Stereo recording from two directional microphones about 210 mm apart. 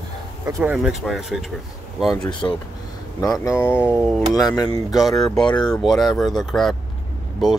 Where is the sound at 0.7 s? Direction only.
Centre (ahead or behind).